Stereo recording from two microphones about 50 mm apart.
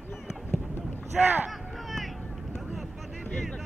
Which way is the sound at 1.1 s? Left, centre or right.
Centre.